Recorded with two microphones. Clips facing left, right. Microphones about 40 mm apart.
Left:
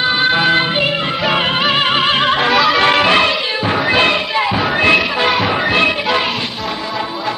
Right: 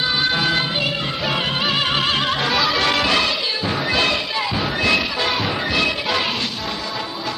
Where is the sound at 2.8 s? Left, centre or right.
Left.